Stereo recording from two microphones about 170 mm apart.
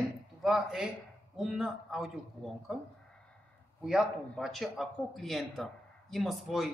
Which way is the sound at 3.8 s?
Centre (ahead or behind).